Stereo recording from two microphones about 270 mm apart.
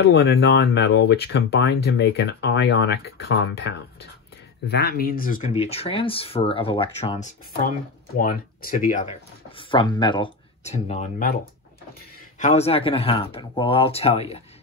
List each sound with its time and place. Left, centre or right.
0.0 s speech: left
9.6 s speech: centre
12.4 s speech: left